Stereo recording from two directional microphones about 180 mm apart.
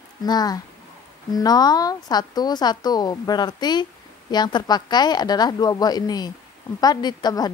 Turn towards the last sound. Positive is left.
turn(degrees=20)  # may be behind; listen again after turning